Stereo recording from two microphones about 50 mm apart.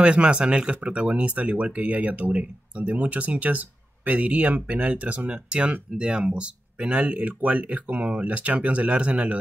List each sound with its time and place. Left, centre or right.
0.0 s speech: right